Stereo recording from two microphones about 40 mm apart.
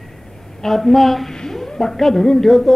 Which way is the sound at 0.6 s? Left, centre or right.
Centre.